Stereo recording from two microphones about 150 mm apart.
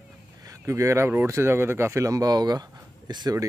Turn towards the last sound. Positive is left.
turn(degrees=-25)  # may be behind; listen again after turning